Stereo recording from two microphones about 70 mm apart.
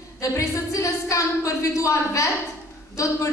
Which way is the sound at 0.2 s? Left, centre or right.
Left.